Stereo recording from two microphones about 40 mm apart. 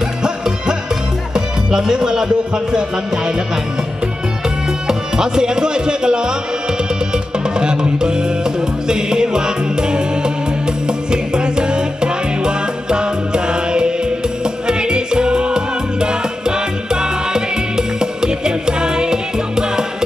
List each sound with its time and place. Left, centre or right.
1.3 s speech: centre
4.8 s speech: centre
7.5 s music: right